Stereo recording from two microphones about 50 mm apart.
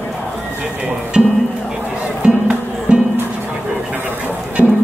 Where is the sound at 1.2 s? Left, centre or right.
Centre.